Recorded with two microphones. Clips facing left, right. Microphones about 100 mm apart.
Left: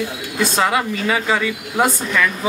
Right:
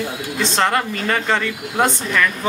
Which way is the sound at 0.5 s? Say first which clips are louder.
Even; 5° left (ahead or behind).